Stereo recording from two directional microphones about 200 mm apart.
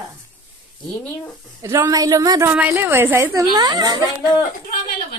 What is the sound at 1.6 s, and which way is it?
A woman's voice, 15° right (ahead or behind).